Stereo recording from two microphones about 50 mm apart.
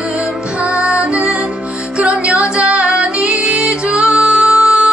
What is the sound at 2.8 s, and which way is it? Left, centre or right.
Female singing, centre.